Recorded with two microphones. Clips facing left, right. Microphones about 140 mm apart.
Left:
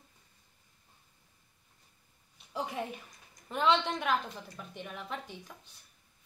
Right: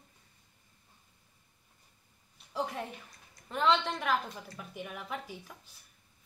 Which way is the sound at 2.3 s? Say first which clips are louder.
Right 1 dB; centre (ahead or behind).